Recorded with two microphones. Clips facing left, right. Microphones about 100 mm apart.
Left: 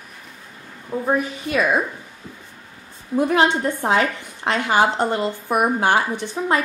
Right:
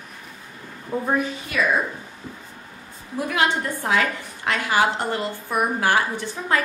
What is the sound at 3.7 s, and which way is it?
A woman's voice, 30° left (ahead or behind).